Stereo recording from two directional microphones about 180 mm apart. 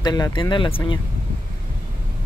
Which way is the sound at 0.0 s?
20° left (ahead or behind).